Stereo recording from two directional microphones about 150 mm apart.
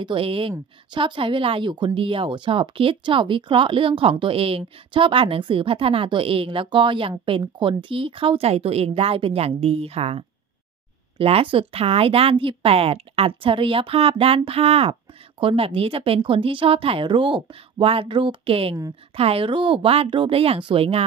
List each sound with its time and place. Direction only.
0.0 s speech: 35° right (ahead or behind)